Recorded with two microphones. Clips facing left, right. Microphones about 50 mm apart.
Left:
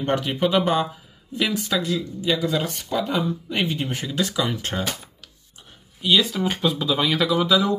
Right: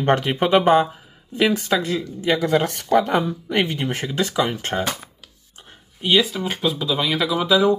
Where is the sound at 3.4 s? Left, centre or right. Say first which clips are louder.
Right 3 dB; right.